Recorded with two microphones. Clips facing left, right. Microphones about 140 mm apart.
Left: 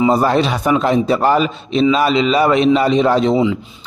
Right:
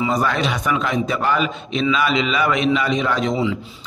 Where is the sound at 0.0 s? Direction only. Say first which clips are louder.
Left 6 dB; 30° left (ahead or behind).